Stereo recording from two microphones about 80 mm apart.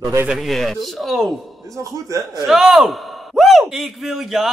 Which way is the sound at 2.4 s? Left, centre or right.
Centre.